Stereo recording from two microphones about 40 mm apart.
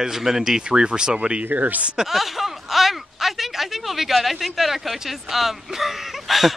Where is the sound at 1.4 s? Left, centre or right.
Right.